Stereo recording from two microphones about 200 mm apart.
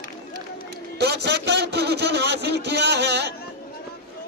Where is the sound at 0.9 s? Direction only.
55° right (ahead or behind).